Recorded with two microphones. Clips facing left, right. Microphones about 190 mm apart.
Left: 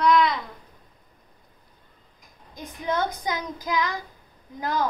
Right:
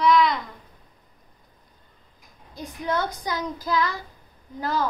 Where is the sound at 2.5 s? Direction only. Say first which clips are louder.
Even; 20° left (ahead or behind).